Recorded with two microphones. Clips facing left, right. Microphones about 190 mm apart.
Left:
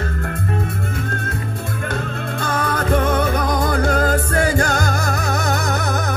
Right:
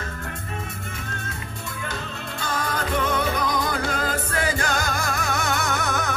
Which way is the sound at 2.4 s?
50° left (ahead or behind).